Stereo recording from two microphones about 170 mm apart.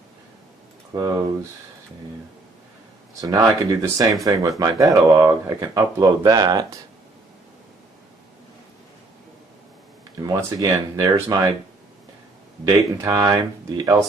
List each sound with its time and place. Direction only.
0.9 s speech: 20° right (ahead or behind)
3.2 s speech: 20° right (ahead or behind)
10.2 s speech: 20° right (ahead or behind)
12.6 s speech: 20° right (ahead or behind)